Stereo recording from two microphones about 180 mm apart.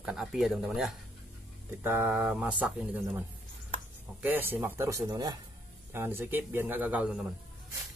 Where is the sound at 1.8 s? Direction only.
10° right (ahead or behind).